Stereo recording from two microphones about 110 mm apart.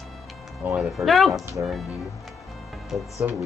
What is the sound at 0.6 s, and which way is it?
Speech, 10° right (ahead or behind).